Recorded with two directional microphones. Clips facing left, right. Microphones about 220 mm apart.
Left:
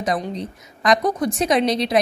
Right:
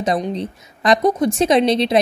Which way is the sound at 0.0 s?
25° right (ahead or behind).